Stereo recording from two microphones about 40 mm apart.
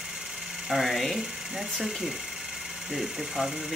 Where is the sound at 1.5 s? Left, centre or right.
Centre.